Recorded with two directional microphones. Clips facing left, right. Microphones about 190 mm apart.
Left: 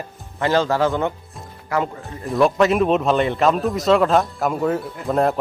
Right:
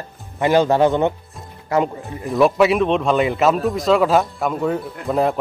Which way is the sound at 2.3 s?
Centre (ahead or behind).